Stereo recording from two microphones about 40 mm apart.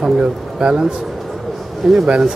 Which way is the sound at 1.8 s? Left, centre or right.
Centre.